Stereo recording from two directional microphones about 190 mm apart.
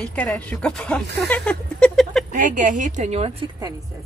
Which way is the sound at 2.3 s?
45° right (ahead or behind).